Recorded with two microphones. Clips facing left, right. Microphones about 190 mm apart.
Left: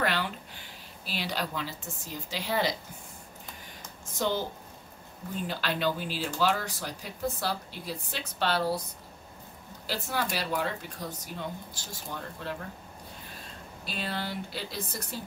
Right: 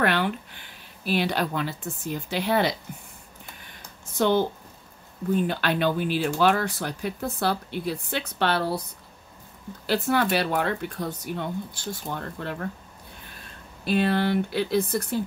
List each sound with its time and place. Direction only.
0.0 s speech: 60° right (ahead or behind)
4.2 s speech: 65° right (ahead or behind)
9.8 s speech: 60° right (ahead or behind)
13.8 s speech: 60° right (ahead or behind)